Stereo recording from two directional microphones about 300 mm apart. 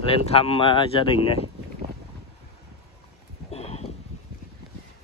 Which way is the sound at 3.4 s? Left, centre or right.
Left.